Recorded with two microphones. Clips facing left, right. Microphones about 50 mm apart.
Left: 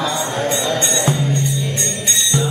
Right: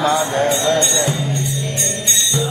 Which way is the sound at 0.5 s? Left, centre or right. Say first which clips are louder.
Right 3 dB; centre.